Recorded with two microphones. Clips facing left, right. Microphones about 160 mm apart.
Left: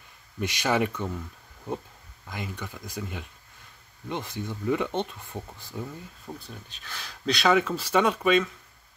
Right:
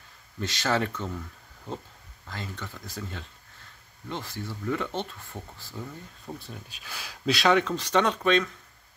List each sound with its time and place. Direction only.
0.4 s speech: 15° left (ahead or behind)
6.2 s speech: centre (ahead or behind)